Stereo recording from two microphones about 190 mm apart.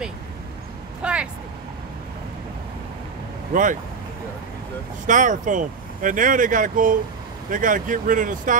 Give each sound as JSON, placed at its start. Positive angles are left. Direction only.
{"t": 1.0, "sound": "vehicle", "side_deg": -5}
{"t": 3.5, "sound": "speech", "side_deg": -45}
{"t": 5.0, "sound": "speech", "side_deg": -40}